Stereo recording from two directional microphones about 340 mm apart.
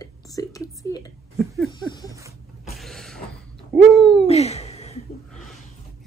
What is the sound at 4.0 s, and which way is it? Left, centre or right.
Speech, centre.